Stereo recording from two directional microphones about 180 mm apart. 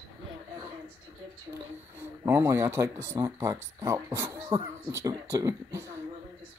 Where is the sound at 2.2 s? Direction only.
15° right (ahead or behind).